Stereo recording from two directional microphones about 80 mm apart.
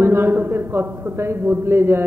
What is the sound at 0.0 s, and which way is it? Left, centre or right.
A man's voice, right.